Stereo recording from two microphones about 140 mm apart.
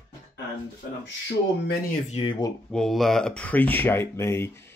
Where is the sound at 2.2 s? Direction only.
45° left (ahead or behind).